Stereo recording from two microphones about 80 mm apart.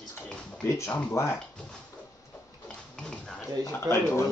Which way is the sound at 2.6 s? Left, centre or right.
Centre.